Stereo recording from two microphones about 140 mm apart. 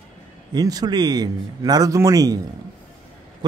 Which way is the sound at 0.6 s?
30° right (ahead or behind).